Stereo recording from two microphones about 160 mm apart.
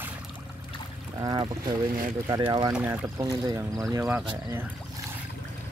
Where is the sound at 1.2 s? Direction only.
25° right (ahead or behind).